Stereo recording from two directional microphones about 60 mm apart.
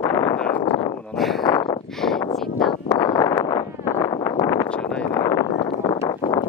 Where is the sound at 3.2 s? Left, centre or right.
Left.